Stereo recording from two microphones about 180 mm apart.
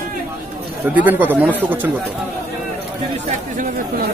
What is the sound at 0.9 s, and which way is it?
Speech, 10° right (ahead or behind).